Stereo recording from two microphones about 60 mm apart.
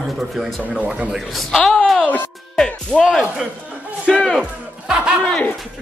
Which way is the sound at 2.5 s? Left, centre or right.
Centre.